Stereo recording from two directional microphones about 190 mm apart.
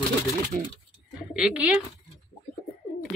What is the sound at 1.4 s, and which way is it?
Speech, centre (ahead or behind).